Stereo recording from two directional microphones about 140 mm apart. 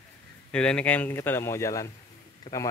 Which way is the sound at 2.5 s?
35° left (ahead or behind).